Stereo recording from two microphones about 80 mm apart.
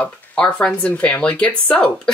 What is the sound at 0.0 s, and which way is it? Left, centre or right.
Speech, centre.